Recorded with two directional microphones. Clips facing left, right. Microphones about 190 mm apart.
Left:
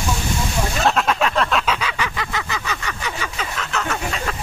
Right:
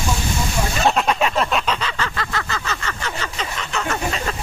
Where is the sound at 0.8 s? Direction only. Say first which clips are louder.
Right 1 dB; 5° right (ahead or behind).